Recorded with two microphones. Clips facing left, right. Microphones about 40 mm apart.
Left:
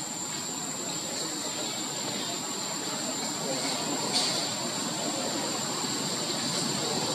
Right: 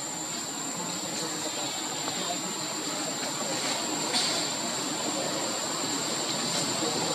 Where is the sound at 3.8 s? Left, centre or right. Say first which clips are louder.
Even; centre.